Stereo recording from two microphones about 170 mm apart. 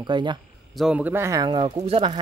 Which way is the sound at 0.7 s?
5° right (ahead or behind).